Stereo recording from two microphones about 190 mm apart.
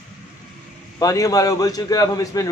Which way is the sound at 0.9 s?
15° left (ahead or behind).